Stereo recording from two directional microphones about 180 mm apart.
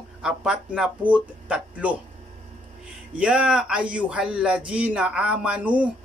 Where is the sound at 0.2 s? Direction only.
5° right (ahead or behind).